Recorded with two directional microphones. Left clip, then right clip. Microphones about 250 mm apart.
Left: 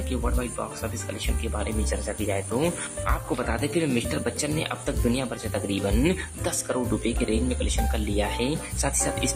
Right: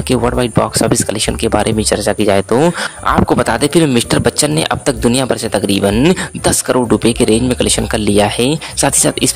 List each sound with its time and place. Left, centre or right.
0.1 s speech: right